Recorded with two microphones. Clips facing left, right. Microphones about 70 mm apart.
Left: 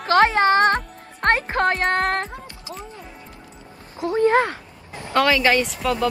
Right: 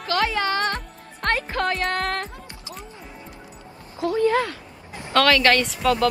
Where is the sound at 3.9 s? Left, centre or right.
Left.